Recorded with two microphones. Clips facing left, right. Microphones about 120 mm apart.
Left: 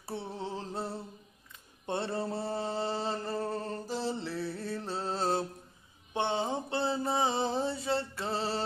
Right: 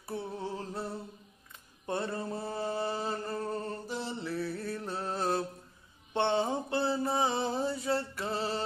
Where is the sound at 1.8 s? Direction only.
25° left (ahead or behind).